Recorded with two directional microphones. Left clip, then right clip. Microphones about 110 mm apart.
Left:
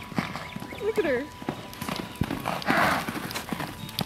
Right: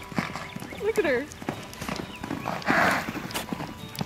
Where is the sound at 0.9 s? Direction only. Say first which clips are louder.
Right 1 dB; 45° right (ahead or behind).